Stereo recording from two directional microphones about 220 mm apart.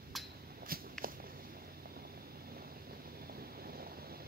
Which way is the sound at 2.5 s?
45° right (ahead or behind).